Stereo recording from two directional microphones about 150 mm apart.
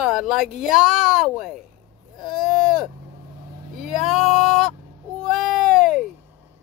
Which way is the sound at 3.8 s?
Centre (ahead or behind).